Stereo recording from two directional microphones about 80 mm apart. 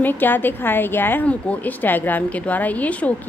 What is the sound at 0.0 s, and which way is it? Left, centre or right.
A woman's voice, left.